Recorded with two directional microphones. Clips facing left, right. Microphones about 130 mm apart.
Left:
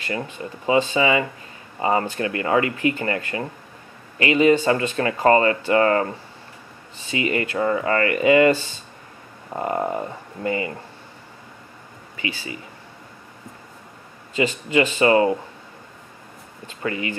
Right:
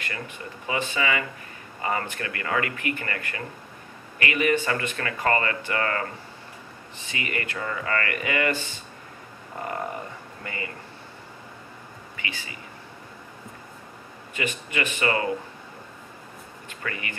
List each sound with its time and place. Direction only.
0.1 s speech: 25° left (ahead or behind)
7.1 s speech: 25° left (ahead or behind)
9.6 s speech: 25° left (ahead or behind)
14.3 s speech: 25° left (ahead or behind)
16.8 s speech: 25° left (ahead or behind)